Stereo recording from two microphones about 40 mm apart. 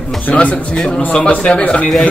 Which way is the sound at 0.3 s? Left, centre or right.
Left.